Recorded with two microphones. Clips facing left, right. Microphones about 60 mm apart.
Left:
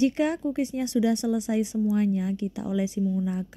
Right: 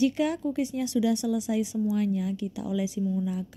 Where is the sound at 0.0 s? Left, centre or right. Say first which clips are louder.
Left 1 dB; left.